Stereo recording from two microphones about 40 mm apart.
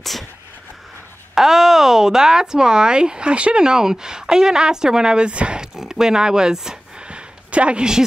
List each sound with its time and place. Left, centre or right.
1.3 s speech: centre; by 3.6 s right
3.6 s a woman's voice: centre
5.6 s speech: centre
7.0 s a sound: right